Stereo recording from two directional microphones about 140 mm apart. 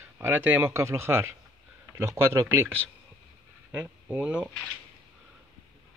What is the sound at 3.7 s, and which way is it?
Speech, 10° right (ahead or behind).